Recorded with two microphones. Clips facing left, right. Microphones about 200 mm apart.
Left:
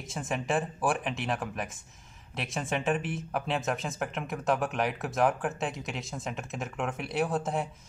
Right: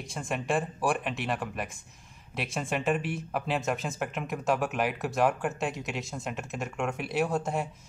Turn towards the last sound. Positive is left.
turn(degrees=0)  # may be behind; listen again after turning